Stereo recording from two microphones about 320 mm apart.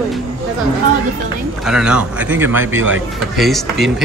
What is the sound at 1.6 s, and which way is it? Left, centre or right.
A man's voice, centre.